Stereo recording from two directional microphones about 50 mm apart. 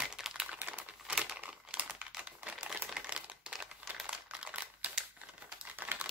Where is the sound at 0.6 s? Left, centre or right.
Right.